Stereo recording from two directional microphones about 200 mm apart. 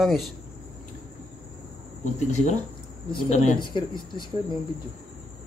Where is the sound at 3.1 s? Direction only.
25° left (ahead or behind).